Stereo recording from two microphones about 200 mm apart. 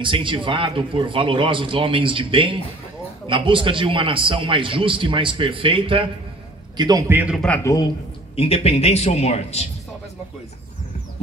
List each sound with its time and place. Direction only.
0.0 s a man's voice: 25° right (ahead or behind); by 7.4 s 5° right (ahead or behind)
7.4 s a man's voice: 10° left (ahead or behind)
8.4 s a man's voice: 30° left (ahead or behind)